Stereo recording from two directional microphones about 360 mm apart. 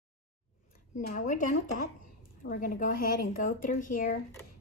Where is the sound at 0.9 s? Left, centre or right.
Left.